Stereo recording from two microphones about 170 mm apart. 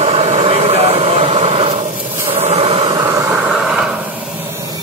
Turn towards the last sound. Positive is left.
turn(degrees=-5)  # may be behind; listen again after turning